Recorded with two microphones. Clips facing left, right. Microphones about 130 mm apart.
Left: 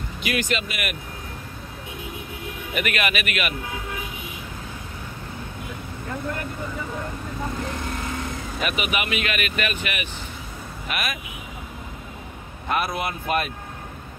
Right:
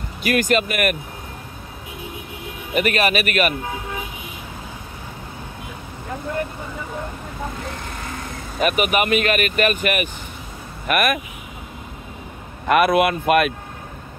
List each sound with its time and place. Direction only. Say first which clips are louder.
0.2 s speech: right 7 dB; 45° right (ahead or behind)
2.7 s speech: right 6 dB; 35° right (ahead or behind)
8.5 s speech: right 8 dB; 50° right (ahead or behind)
10.9 s speech: right 10 dB; 55° right (ahead or behind)
12.6 s speech: right 10 dB; 70° right (ahead or behind)